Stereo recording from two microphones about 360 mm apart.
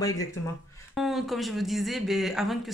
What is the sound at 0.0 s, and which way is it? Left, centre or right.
Speech, centre.